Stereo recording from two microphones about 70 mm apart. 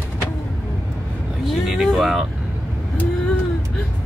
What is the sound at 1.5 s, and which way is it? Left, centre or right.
Vehicle, centre.